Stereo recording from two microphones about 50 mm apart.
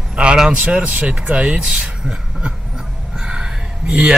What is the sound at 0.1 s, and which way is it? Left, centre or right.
Speech, centre.